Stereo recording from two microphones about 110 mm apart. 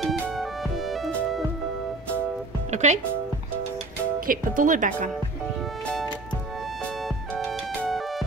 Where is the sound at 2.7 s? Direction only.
90° right.